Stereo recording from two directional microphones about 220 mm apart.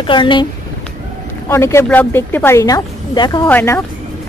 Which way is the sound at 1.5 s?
10° left (ahead or behind).